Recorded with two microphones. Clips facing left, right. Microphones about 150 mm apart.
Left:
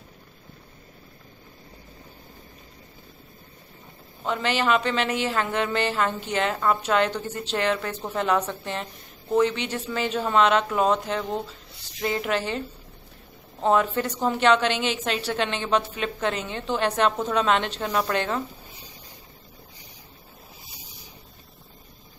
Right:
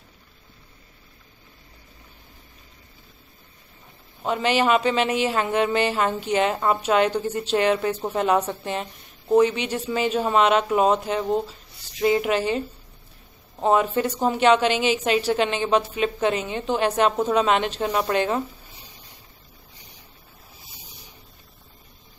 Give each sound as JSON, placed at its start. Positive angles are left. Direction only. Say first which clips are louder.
{"t": 4.2, "sound": "a woman's voice", "louder": "right 4 dB", "side_deg": -15}
{"t": 13.7, "sound": "a woman's voice", "louder": "right 2 dB", "side_deg": -15}